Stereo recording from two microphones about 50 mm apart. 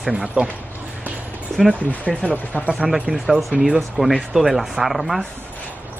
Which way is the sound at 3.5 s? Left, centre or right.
Centre.